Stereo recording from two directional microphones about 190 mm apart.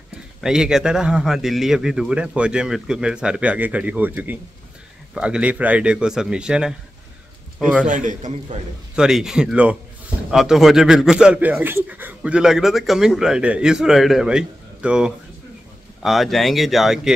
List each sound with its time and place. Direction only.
0.4 s a man's voice: 5° right (ahead or behind)
7.8 s a man's voice: 40° right (ahead or behind)
8.9 s a man's voice: 5° right (ahead or behind)